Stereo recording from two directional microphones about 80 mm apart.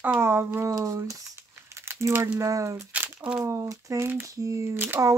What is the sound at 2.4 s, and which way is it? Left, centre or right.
Speech, right.